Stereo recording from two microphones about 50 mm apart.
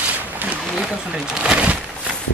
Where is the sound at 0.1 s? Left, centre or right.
Right.